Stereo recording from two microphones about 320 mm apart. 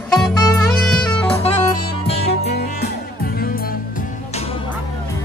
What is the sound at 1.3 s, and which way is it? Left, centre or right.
Music, centre.